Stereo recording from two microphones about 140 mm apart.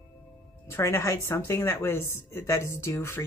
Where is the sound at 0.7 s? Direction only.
20° left (ahead or behind).